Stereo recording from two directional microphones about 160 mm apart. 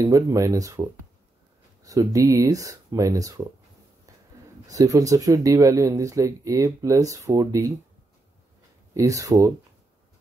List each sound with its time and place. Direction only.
0.0 s speech: 20° right (ahead or behind)
4.6 s speech: 20° right (ahead or behind)
8.9 s speech: 20° right (ahead or behind)